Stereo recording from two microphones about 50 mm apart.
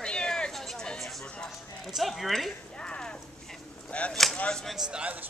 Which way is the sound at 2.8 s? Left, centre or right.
Centre.